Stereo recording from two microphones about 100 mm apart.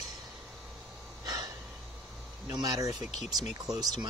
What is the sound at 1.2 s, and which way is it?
Gasp, 40° right (ahead or behind).